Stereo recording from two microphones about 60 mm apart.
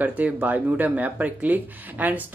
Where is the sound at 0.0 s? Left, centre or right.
Right.